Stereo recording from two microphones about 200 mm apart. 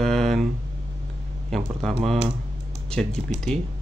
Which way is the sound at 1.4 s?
Centre (ahead or behind).